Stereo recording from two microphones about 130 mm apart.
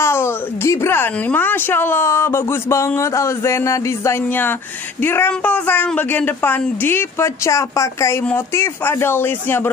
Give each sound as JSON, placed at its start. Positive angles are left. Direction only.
{"t": 0.0, "sound": "a woman's voice", "side_deg": 20}